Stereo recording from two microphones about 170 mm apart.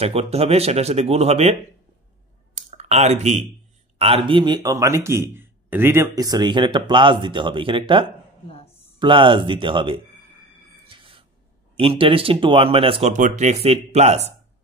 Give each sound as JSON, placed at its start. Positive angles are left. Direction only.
{"t": 0.0, "sound": "speech", "side_deg": -35}
{"t": 2.5, "sound": "typing", "side_deg": -40}
{"t": 4.3, "sound": "speech", "side_deg": -25}
{"t": 10.9, "sound": "a sound", "side_deg": -30}
{"t": 11.7, "sound": "speech", "side_deg": -30}
{"t": 13.1, "sound": "speech", "side_deg": -45}